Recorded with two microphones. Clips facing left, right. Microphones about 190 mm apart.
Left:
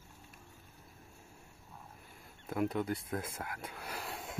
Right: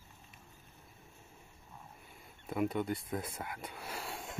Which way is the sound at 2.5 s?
Centre (ahead or behind).